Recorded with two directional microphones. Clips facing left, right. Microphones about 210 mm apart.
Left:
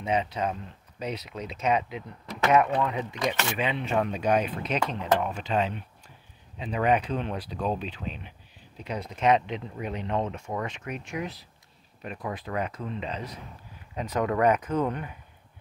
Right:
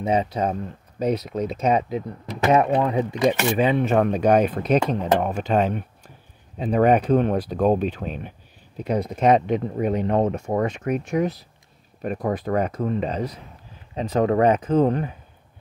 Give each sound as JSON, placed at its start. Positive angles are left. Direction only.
{"t": 0.0, "sound": "speech", "side_deg": -40}
{"t": 13.9, "sound": "speech", "side_deg": -30}